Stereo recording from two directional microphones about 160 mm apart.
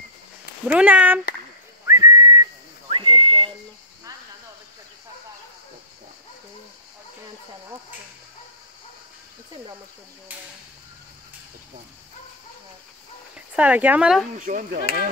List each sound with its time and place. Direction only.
0.7 s speech: 10° right (ahead or behind)
1.9 s whistling: 20° right (ahead or behind)
2.9 s whistling: 30° right (ahead or behind)
13.6 s speech: 10° right (ahead or behind)
14.4 s speech: 55° right (ahead or behind)